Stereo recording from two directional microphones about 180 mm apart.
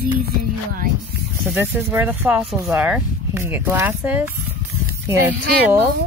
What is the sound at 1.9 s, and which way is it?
Speech, 10° right (ahead or behind).